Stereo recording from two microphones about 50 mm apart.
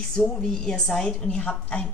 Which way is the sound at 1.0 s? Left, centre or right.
Left.